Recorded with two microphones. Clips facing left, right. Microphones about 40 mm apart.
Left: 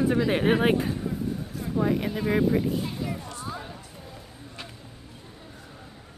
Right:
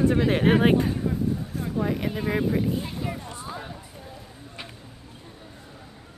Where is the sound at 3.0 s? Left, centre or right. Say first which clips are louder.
Right 1 dB; right.